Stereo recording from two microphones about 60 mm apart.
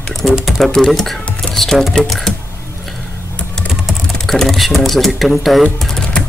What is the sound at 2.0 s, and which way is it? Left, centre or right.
Speech, centre.